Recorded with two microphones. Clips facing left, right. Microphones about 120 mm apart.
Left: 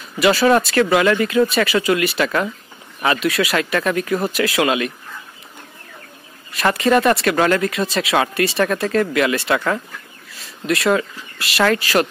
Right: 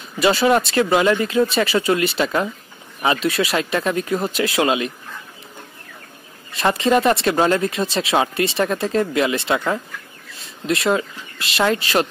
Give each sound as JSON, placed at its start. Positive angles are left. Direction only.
{"t": 0.2, "sound": "speech", "side_deg": -25}
{"t": 6.5, "sound": "speech", "side_deg": -25}